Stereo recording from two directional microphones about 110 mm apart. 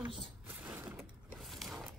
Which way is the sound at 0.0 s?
50° right (ahead or behind).